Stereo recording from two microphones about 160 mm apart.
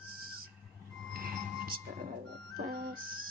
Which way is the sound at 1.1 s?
65° right (ahead or behind).